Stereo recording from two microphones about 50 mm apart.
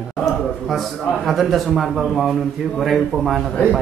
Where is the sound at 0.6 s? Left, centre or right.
Centre.